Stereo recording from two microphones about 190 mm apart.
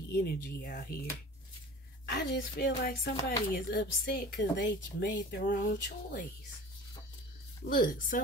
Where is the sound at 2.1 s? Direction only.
60° left (ahead or behind).